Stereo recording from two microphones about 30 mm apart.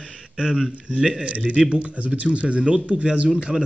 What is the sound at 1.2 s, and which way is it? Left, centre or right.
A man's voice, right.